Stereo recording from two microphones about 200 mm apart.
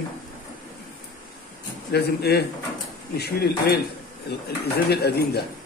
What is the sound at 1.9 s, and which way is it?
Speech, 55° left (ahead or behind).